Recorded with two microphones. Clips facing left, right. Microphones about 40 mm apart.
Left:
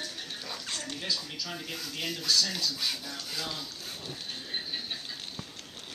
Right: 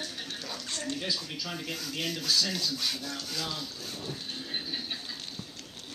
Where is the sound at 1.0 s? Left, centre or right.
Centre.